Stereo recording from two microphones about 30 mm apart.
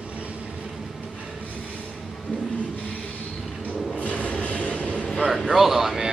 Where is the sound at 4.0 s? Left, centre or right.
Left.